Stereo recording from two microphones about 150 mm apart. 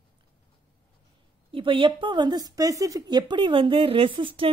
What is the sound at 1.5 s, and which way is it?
A woman's voice, 35° right (ahead or behind).